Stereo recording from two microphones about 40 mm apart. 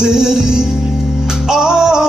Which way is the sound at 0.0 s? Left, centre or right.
Centre.